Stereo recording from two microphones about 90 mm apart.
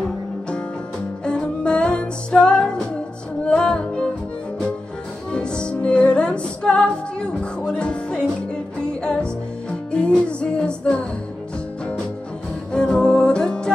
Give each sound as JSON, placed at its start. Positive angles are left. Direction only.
{"t": 1.2, "sound": "music", "side_deg": 10}
{"t": 5.3, "sound": "music", "side_deg": 10}
{"t": 12.7, "sound": "music", "side_deg": 10}